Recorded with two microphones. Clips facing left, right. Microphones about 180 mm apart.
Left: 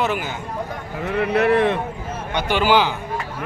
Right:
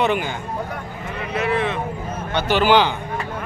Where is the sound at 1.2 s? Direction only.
60° left (ahead or behind).